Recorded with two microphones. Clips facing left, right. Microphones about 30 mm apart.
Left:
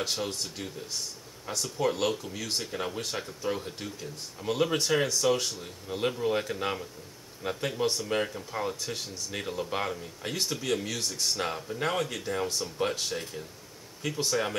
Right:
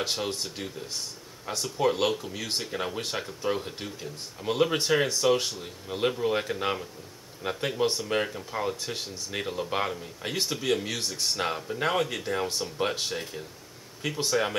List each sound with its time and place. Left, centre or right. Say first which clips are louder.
0.0 s speech: right 2 dB; centre